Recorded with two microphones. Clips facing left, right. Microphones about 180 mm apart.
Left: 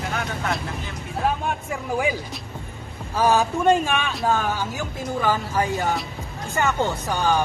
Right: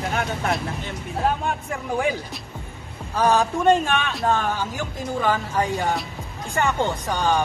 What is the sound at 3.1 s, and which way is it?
Speech, 5° left (ahead or behind).